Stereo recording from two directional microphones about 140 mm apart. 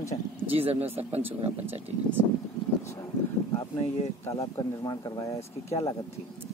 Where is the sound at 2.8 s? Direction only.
20° left (ahead or behind).